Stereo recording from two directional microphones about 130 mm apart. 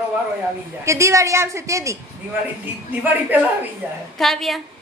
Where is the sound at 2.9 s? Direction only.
15° right (ahead or behind).